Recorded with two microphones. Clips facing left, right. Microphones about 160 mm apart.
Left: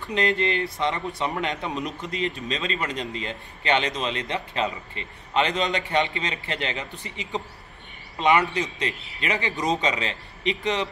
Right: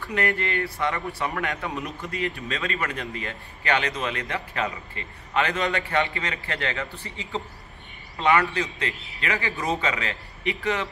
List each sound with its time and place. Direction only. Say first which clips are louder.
0.0 s speech: left 2 dB; 20° left (ahead or behind)